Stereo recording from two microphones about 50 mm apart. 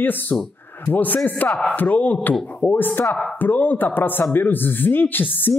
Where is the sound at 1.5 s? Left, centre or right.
Centre.